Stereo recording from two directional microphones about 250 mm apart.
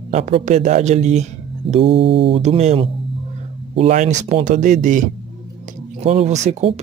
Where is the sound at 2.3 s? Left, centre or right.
Right.